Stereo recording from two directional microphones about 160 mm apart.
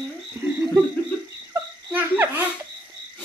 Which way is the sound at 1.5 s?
15° right (ahead or behind).